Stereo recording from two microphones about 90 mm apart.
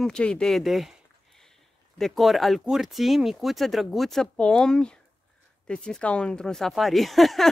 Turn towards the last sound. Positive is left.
turn(degrees=0)  # may be behind; listen again after turning